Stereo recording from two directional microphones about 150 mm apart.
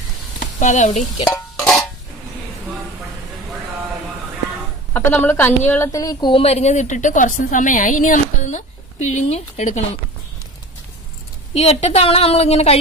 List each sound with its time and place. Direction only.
0.6 s a woman's voice: 55° left (ahead or behind)
4.9 s a woman's voice: 15° left (ahead or behind); by 9.8 s 50° left (ahead or behind)
11.5 s a woman's voice: 45° left (ahead or behind)